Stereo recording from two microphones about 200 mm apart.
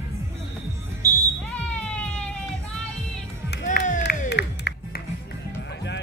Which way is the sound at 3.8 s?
55° left (ahead or behind).